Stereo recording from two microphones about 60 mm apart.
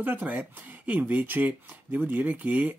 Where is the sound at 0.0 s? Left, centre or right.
Right.